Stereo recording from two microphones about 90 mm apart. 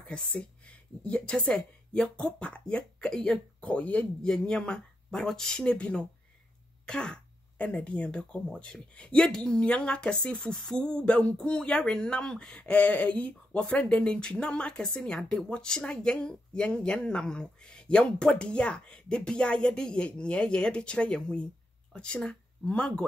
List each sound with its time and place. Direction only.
0.1 s a woman's voice: 10° left (ahead or behind)